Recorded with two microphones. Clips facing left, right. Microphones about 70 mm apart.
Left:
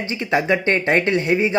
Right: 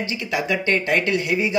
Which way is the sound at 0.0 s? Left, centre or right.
Left.